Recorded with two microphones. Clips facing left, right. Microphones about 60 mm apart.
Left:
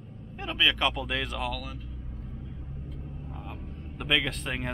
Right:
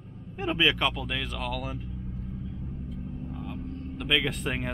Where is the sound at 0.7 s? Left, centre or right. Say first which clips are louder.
Left 1 dB; centre.